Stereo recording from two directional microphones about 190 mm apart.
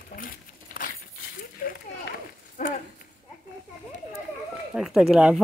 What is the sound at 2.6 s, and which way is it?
Run, 45° left (ahead or behind).